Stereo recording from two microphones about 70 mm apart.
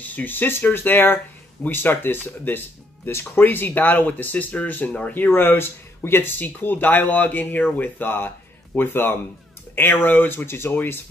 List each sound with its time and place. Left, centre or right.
0.0 s speech: left